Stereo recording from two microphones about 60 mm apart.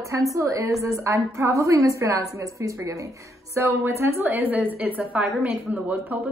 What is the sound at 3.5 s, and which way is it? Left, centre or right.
A woman's voice, right.